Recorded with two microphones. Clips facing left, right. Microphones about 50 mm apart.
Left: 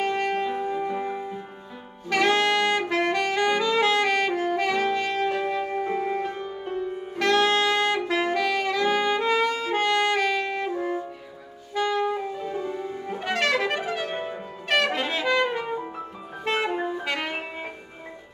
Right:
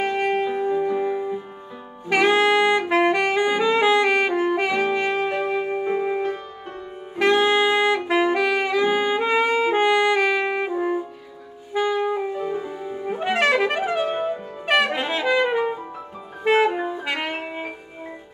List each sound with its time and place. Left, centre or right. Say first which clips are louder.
0.0 s music: right 3 dB; centre
2.0 s saxophone: right 4 dB; centre
11.7 s music: right 3 dB; centre
14.7 s brass instrument: right 3 dB; centre
16.4 s music: right 7 dB; centre